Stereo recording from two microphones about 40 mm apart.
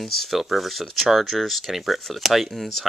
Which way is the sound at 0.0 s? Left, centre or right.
Centre.